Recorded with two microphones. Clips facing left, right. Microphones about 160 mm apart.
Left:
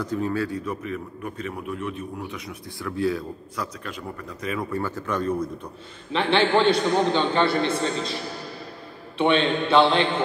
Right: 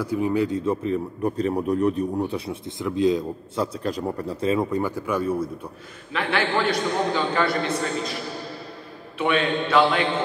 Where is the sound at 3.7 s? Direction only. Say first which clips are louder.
Right 8 dB; 35° right (ahead or behind); by 5.7 s 10° right (ahead or behind).